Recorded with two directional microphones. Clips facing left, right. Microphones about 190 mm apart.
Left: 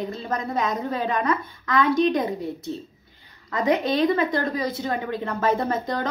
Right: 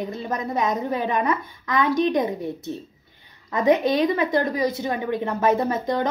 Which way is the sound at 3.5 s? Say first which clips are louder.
Right 3 dB; 20° right (ahead or behind).